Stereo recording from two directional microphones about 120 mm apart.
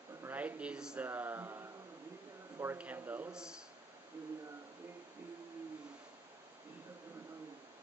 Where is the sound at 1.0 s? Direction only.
15° right (ahead or behind).